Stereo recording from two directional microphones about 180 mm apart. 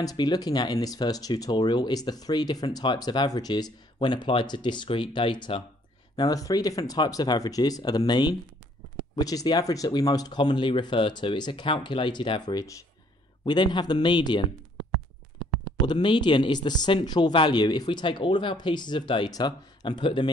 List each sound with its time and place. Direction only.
0.0 s speech: 20° left (ahead or behind)
15.9 s speech: 25° left (ahead or behind)